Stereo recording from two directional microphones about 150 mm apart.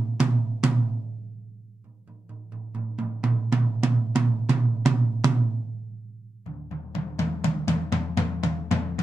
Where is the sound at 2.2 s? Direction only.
5° right (ahead or behind).